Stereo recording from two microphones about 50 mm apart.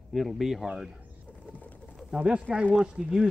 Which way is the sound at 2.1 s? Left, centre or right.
Centre.